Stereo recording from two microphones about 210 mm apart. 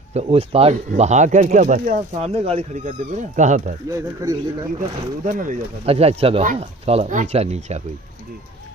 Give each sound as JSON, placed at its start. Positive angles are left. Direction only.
{"t": 0.1, "sound": "speech", "side_deg": -30}
{"t": 3.9, "sound": "speech", "side_deg": -15}
{"t": 4.7, "sound": "speech", "side_deg": -40}